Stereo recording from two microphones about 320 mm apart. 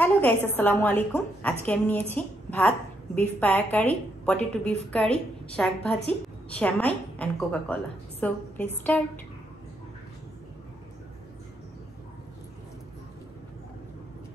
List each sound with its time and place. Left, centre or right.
0.0 s a woman's voice: centre